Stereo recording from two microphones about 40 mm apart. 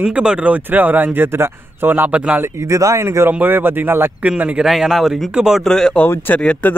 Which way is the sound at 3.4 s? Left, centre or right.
Right.